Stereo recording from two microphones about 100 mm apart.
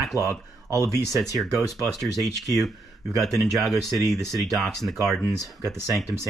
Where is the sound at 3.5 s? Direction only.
Centre (ahead or behind).